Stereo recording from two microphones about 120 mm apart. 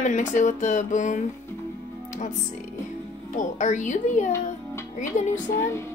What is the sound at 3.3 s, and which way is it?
A woman's voice, 90° left.